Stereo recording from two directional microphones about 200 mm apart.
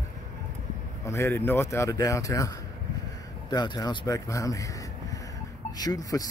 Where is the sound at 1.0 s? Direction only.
15° left (ahead or behind).